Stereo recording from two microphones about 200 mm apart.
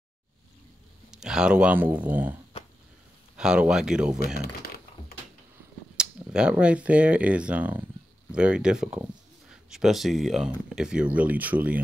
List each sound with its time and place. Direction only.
1.1 s speech: 5° right (ahead or behind)
3.3 s speech: 5° right (ahead or behind)
4.2 s speech: 50° left (ahead or behind)
5.9 s speech: 5° right (ahead or behind)